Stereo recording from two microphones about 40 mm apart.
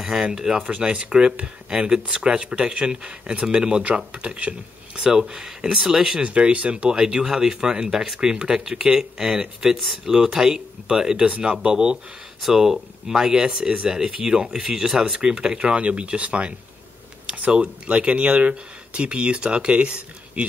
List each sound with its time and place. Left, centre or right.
0.0 s speech: centre
0.7 s speech: right
4.1 s speech: right
5.0 s speech: centre
5.8 s speech: centre
6.2 s speech: right
6.9 s speech: centre
11.2 s speech: right
12.4 s speech: centre; by 16.5 s right
17.6 s speech: right